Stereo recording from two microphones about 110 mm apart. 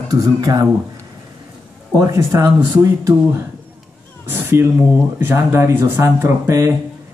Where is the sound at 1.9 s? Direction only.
30° right (ahead or behind).